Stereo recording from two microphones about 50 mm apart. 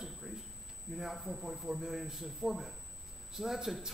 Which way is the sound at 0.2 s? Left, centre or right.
Centre.